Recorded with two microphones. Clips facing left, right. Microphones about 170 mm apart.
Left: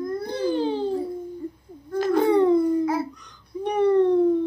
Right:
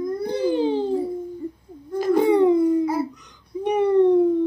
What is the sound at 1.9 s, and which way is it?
Baby cry, 10° right (ahead or behind).